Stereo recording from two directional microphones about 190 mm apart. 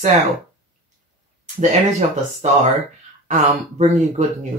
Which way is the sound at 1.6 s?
40° right (ahead or behind).